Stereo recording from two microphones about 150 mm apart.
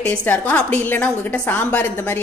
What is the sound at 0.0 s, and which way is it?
A woman's voice, 10° left (ahead or behind).